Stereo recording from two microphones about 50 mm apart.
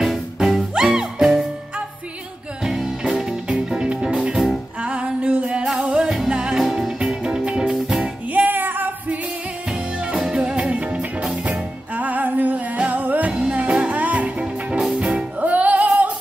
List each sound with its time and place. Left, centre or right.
0.0 s music: centre
2.6 s music: centre
4.8 s music: right
8.0 s music: right
10.1 s music: centre
15.4 s music: right